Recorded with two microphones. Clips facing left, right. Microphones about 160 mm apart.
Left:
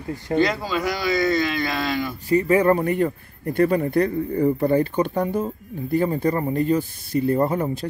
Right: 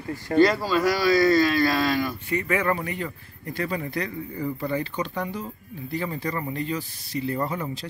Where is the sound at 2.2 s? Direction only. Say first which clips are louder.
Left 8 dB; 35° left (ahead or behind).